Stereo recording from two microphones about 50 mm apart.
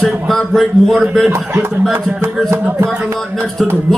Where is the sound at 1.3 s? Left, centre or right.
Right.